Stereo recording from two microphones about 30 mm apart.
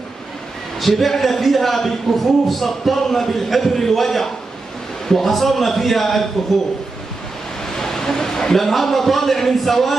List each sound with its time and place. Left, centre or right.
0.7 s a man's voice: centre
7.6 s a sound: centre
8.5 s a man's voice: centre